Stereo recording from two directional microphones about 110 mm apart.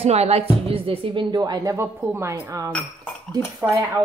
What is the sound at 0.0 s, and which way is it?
Speech, 75° right (ahead or behind).